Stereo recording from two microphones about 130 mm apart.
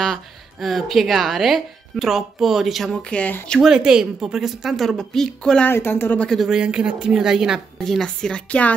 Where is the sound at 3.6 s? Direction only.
5° right (ahead or behind).